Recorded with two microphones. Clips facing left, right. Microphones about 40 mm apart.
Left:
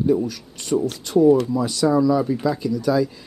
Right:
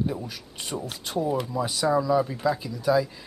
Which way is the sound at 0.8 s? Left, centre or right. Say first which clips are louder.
Left 13 dB; centre.